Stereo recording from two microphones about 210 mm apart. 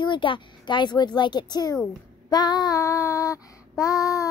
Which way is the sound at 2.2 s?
20° left (ahead or behind).